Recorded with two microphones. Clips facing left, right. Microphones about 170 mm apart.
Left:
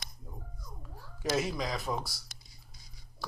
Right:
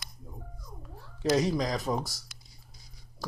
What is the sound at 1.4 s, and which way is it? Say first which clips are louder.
Speech: right 5 dB; 40° right (ahead or behind).